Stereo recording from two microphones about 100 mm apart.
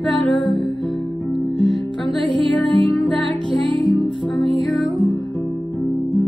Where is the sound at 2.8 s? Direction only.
Centre (ahead or behind).